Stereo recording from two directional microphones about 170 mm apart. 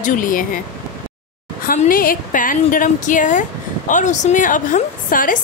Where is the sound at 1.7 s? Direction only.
55° left (ahead or behind).